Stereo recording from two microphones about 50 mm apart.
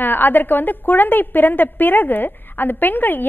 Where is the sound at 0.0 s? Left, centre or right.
Left.